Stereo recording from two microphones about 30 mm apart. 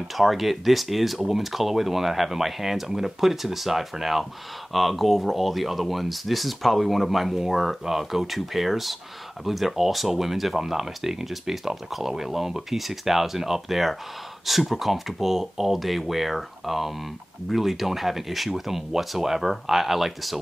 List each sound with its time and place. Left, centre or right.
0.1 s speech: centre